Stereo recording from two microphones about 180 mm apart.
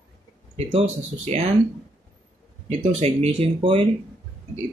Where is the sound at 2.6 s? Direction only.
35° right (ahead or behind).